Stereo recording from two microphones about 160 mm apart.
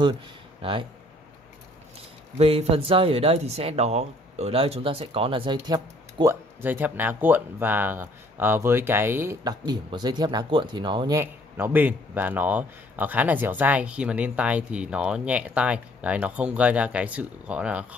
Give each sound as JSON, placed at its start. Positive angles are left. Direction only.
{"t": 0.6, "sound": "speech", "side_deg": -30}
{"t": 2.3, "sound": "speech", "side_deg": -35}
{"t": 6.6, "sound": "speech", "side_deg": -10}